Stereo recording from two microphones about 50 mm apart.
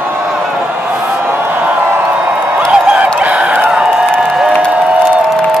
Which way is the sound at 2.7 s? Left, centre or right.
Right.